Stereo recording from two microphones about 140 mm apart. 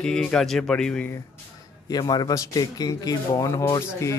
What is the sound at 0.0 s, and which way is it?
Speech, 5° left (ahead or behind).